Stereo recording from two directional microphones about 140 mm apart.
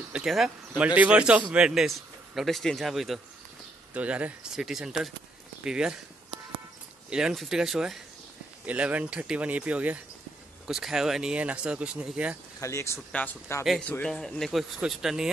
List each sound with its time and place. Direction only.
0.1 s speech: 5° right (ahead or behind)
7.1 s speech: 5° right (ahead or behind)
12.5 s speech: 20° left (ahead or behind); by 15.2 s 5° right (ahead or behind)